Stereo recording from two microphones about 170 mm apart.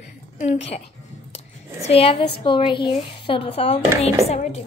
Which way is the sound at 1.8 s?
35° left (ahead or behind).